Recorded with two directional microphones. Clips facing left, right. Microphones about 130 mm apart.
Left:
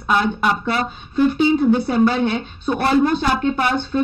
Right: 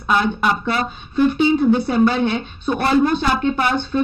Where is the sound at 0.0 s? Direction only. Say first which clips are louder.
Even; 45° left (ahead or behind).